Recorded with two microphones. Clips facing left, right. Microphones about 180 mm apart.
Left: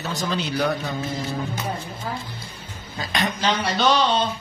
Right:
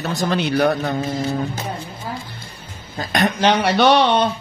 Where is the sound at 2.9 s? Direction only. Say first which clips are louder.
Right 6 dB; 50° right (ahead or behind).